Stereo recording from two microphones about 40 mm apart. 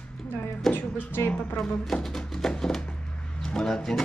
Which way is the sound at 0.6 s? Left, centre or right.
Centre.